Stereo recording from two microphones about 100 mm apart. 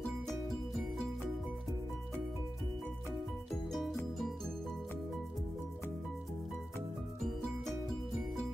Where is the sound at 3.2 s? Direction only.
Centre (ahead or behind).